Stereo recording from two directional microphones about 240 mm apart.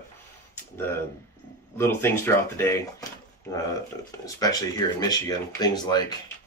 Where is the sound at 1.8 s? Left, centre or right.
Centre.